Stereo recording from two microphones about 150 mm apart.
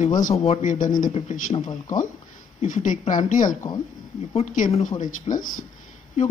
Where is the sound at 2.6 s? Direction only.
55° left (ahead or behind).